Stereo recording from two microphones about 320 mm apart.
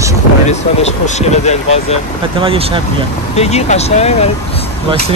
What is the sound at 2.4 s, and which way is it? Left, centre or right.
Speech, centre.